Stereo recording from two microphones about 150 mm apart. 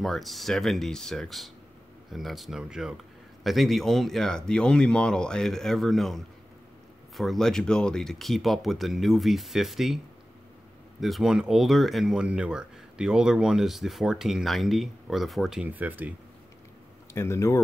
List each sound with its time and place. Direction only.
0.0 s speech: centre (ahead or behind)
11.0 s speech: centre (ahead or behind)
17.1 s speech: 20° left (ahead or behind)